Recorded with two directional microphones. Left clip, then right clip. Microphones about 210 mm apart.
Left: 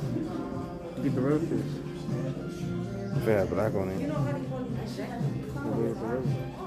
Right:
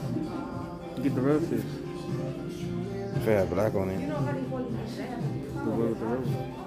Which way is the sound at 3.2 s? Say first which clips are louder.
Right 1 dB; 15° right (ahead or behind).